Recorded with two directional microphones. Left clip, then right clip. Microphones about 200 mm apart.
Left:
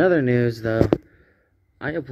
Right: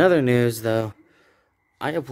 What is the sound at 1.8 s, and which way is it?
Speech, 20° right (ahead or behind).